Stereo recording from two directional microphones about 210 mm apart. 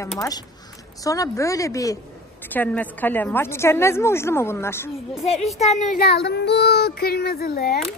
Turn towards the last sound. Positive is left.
turn(degrees=45)  # may be behind; listen again after turning